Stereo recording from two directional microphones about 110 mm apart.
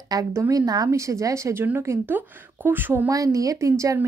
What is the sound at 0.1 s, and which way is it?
Speech, 30° right (ahead or behind).